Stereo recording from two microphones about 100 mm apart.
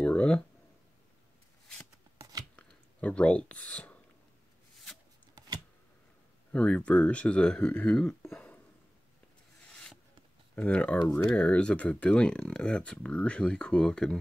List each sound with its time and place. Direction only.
0.0 s a sound: 10° left (ahead or behind)
2.1 s shuffling cards: 40° right (ahead or behind)
2.5 s a sound: 15° left (ahead or behind)
6.5 s speech: 15° left (ahead or behind)
9.7 s rub: 5° left (ahead or behind)
10.5 s speech: 15° left (ahead or behind)